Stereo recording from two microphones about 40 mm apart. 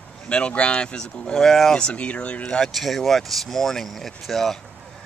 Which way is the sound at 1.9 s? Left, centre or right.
Left.